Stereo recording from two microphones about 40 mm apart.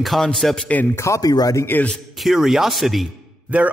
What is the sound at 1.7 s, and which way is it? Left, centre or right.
Speech, left.